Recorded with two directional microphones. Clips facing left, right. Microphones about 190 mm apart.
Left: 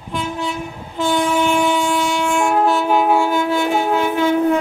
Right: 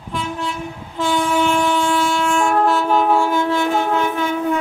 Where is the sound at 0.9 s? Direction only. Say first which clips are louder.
Left 1 dB; 5° left (ahead or behind).